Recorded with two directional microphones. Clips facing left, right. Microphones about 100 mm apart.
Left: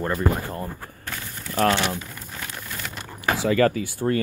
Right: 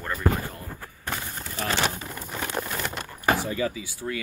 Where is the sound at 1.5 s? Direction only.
75° left (ahead or behind).